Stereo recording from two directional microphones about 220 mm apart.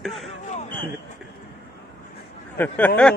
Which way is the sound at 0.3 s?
30° left (ahead or behind).